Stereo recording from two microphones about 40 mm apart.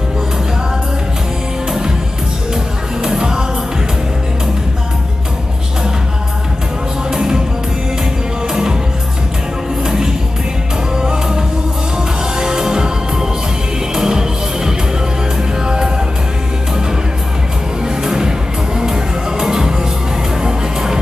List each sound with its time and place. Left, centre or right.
3.0 s music: centre
7.1 s music: centre
9.8 s music: centre
17.8 s music: centre